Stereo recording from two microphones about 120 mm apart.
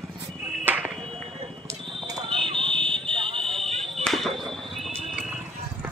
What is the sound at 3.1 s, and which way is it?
Fire alarm, 50° right (ahead or behind).